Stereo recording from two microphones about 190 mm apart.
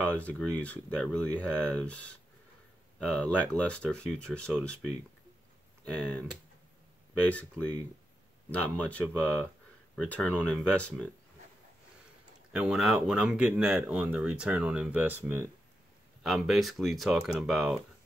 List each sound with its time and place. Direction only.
0.0 s speech: 5° left (ahead or behind)
5.9 s speech: 5° left (ahead or behind)
7.2 s speech: 5° left (ahead or behind)
12.5 s speech: 5° right (ahead or behind)